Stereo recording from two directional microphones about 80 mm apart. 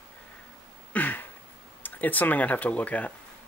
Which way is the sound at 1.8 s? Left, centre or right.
Left.